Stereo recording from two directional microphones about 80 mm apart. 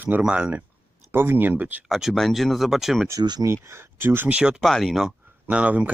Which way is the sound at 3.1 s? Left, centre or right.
Right.